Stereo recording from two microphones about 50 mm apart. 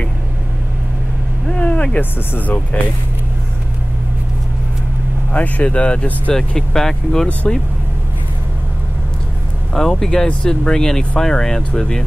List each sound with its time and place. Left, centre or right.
1.5 s vehicle: left
2.0 s speech: left
5.3 s speech: left
6.3 s speech: centre
9.8 s speech: centre